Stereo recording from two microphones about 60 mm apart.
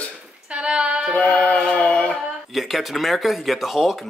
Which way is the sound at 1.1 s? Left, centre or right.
Left.